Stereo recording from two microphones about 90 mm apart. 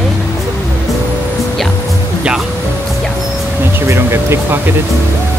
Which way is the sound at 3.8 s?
30° right (ahead or behind).